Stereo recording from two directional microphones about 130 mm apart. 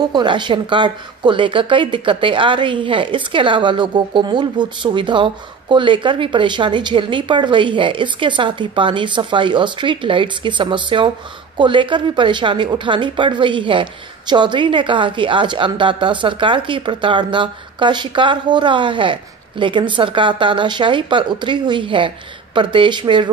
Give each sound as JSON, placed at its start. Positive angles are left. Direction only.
{"t": 0.1, "sound": "a woman's voice", "side_deg": -35}